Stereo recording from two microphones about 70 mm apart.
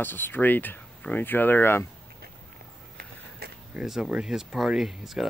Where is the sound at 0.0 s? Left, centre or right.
Left.